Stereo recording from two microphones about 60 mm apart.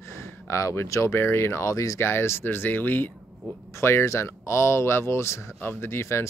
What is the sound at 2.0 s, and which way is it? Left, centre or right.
Speech, left.